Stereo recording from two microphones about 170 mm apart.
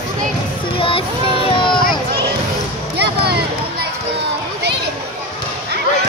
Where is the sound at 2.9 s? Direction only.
70° right (ahead or behind).